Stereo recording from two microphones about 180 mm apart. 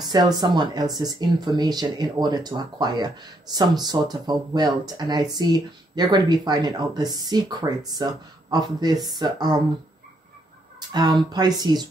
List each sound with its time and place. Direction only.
0.0 s speech: 25° right (ahead or behind)
10.9 s speech: 25° right (ahead or behind)